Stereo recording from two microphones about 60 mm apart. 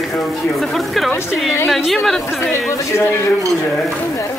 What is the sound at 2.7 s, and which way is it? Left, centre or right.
Speech, left.